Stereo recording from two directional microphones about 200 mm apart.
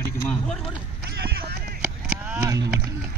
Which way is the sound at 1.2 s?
50° right (ahead or behind).